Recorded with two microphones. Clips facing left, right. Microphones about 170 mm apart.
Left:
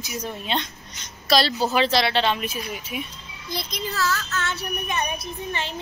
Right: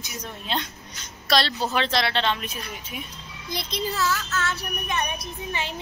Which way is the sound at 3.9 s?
15° right (ahead or behind).